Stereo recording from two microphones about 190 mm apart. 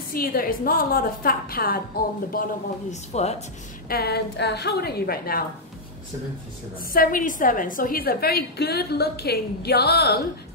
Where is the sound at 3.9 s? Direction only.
55° left (ahead or behind).